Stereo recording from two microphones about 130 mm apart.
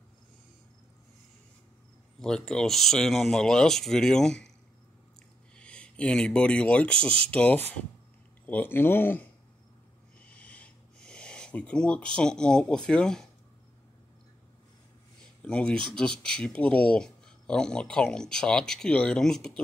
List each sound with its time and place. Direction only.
2.1 s speech: 5° left (ahead or behind)
5.6 s speech: 10° left (ahead or behind)
10.3 s a sound: 10° left (ahead or behind)
15.4 s speech: 5° left (ahead or behind)